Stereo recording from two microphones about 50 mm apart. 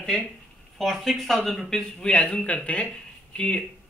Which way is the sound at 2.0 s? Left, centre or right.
Left.